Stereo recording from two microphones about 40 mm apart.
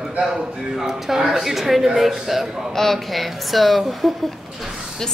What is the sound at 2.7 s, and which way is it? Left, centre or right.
Speech, centre.